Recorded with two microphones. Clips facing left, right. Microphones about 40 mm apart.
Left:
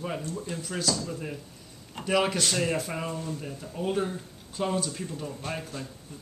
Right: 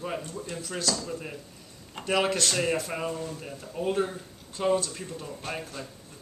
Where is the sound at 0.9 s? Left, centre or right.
Centre.